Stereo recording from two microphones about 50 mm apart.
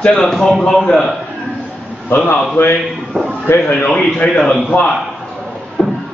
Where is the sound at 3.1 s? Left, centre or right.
Right.